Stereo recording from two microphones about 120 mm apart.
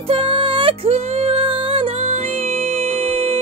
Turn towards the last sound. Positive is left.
turn(degrees=-50)  # may be behind; listen again after turning